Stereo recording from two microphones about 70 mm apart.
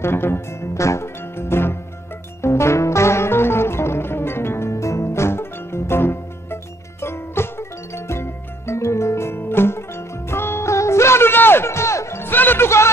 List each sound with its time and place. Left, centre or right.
0.0 s speech: left
2.4 s music: left